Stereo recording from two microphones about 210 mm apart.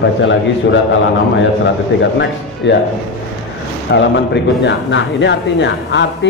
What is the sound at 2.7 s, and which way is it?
Speech, 60° left (ahead or behind).